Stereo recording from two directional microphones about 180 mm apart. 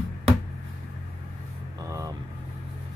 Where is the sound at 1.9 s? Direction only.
20° right (ahead or behind).